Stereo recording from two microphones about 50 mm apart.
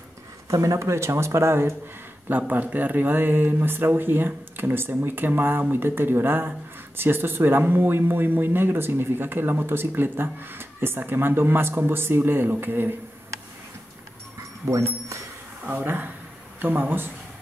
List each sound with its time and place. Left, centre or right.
0.5 s speech: right
2.2 s speech: right
14.7 s a sound: right
15.7 s speech: right